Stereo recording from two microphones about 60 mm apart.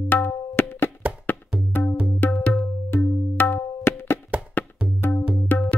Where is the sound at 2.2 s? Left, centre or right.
Left.